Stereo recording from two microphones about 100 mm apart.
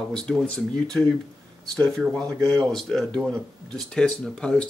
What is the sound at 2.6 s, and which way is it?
Speech, 5° left (ahead or behind).